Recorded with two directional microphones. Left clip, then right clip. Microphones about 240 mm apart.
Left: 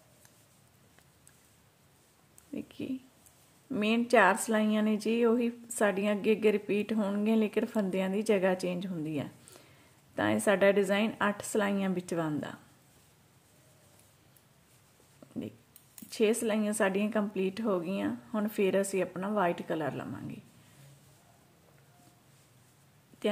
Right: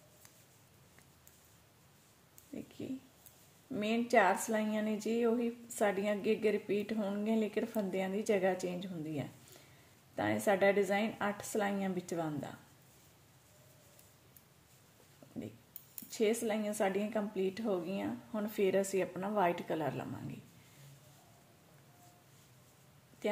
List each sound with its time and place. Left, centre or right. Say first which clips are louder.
2.5 s a sound: left 6 dB; left
3.7 s speech: left 4 dB; left
16.1 s speech: left 5 dB; left